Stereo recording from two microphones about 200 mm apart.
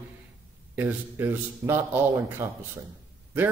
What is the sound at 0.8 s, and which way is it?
A man's voice, 10° right (ahead or behind).